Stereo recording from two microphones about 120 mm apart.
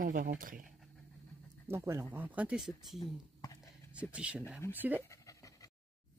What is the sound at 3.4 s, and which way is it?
Whispering, 30° left (ahead or behind).